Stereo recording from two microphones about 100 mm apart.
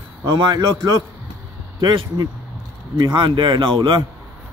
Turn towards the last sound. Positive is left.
turn(degrees=-50)  # may be behind; listen again after turning